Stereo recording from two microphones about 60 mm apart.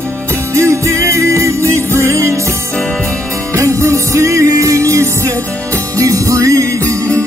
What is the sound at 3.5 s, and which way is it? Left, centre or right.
Music, right.